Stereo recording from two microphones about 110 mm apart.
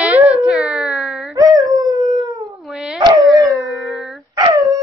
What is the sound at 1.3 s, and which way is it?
Dog, 35° right (ahead or behind).